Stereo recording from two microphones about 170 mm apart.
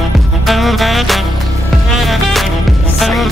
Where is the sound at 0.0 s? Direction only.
Centre (ahead or behind).